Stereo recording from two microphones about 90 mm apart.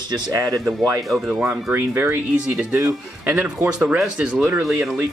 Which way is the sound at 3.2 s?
15° right (ahead or behind).